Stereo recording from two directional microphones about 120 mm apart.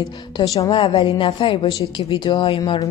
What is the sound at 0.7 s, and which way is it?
Speech, 45° left (ahead or behind).